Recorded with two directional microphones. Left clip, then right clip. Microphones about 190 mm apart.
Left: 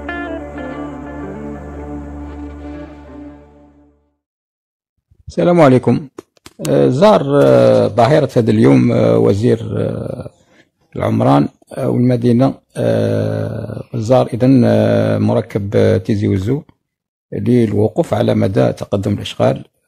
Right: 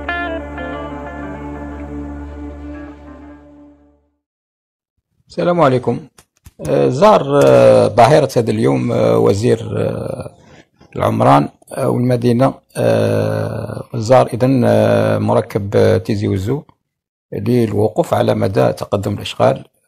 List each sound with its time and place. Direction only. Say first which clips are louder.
0.0 s music: right 3 dB; centre (ahead or behind)
5.2 s speech: left 3 dB; 35° left (ahead or behind)